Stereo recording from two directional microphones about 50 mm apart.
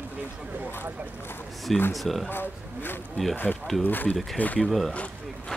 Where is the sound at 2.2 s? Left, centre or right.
Left.